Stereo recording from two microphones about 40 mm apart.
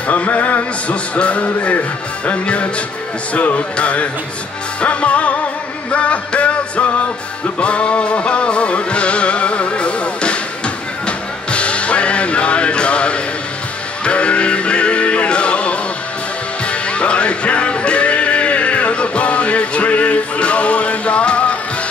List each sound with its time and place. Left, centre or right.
0.1 s speech: left
5.9 s music: left